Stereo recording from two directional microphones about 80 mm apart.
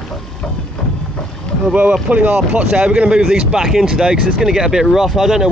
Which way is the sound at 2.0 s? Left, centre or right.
Centre.